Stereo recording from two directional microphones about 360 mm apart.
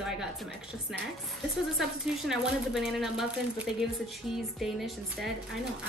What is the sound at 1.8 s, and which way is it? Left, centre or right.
A woman's voice, centre.